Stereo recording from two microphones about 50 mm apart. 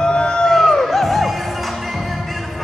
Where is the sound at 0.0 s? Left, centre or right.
Centre.